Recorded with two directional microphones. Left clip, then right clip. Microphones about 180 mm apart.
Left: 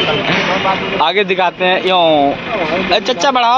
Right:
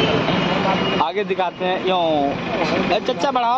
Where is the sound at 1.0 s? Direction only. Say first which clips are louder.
Left 8 dB; 20° left (ahead or behind).